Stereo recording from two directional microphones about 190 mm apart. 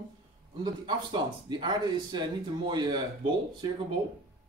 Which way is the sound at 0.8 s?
20° right (ahead or behind).